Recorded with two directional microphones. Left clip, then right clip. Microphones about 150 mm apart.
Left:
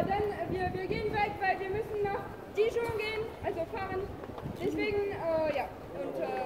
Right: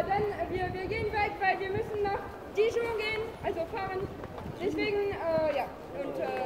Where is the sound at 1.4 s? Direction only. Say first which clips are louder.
Right 3 dB; 10° right (ahead or behind).